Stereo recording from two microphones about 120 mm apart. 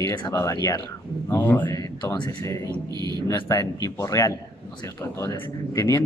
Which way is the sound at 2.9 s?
35° right (ahead or behind).